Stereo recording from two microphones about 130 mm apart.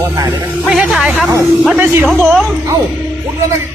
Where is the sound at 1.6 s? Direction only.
15° right (ahead or behind).